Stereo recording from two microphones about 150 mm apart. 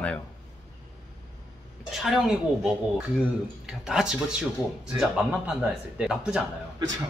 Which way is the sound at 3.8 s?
5° right (ahead or behind).